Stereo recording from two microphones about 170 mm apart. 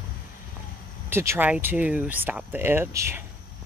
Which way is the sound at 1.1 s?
15° right (ahead or behind).